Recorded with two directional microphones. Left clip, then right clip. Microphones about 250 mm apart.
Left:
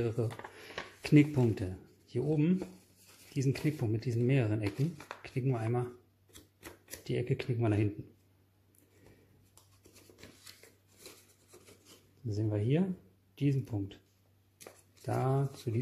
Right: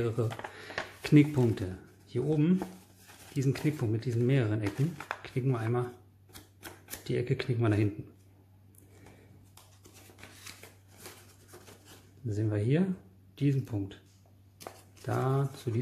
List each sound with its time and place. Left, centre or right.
0.0 s speech: centre
12.4 s speech: centre
15.0 s speech: centre